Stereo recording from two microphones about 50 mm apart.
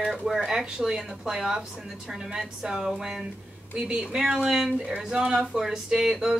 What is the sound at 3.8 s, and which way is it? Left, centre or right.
A woman's voice, right.